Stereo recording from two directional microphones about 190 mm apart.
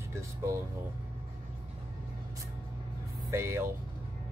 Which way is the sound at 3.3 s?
15° right (ahead or behind).